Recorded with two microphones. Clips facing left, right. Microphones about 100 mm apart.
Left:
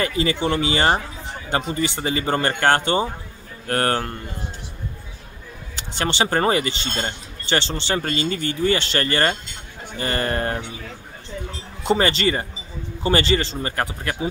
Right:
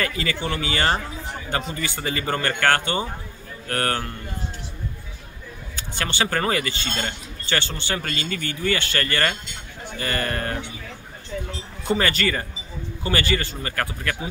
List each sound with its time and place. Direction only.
0.0 s speech: 25° left (ahead or behind)
5.8 s speech: 25° left (ahead or behind)
11.9 s speech: 25° left (ahead or behind)